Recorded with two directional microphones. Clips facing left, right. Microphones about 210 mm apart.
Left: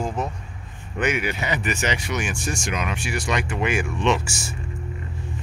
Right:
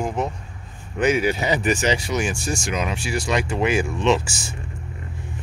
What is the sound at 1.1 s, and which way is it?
Speech, 35° right (ahead or behind).